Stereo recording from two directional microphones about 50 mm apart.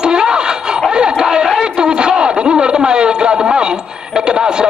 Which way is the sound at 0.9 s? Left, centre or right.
Centre.